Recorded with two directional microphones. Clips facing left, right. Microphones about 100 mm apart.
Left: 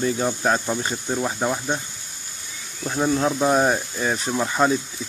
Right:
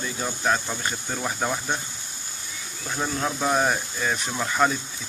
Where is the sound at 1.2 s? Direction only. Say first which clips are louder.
Left 2 dB; 5° left (ahead or behind).